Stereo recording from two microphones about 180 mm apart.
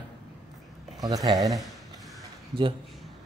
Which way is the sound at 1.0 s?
20° right (ahead or behind).